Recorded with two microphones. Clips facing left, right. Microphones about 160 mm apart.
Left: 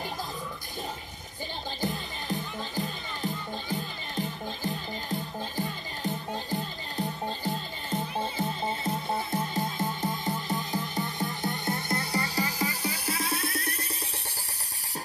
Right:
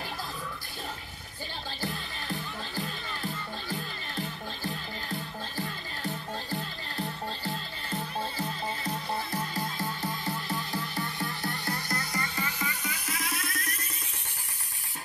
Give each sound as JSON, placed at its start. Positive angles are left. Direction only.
{"t": 1.8, "sound": "music", "side_deg": 20}